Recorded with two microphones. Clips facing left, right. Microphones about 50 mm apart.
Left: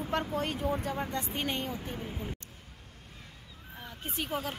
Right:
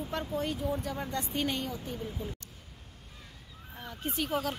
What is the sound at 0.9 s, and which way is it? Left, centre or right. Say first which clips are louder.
Speech: even; left.